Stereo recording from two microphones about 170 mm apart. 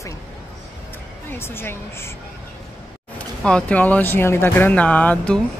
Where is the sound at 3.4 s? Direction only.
5° left (ahead or behind).